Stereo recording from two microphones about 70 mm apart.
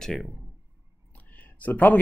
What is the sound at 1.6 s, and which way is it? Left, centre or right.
Speech, left.